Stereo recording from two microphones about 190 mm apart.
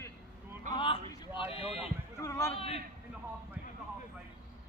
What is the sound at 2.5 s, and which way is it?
Speech, 30° left (ahead or behind).